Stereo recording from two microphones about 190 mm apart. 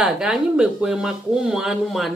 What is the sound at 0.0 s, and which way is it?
Speech, 5° right (ahead or behind).